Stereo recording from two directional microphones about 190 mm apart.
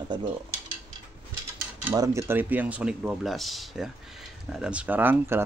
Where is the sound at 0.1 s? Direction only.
25° right (ahead or behind).